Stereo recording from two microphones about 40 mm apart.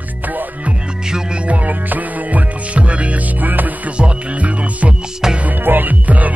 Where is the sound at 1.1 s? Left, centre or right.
Centre.